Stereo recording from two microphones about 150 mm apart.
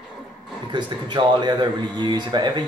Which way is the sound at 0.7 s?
30° right (ahead or behind).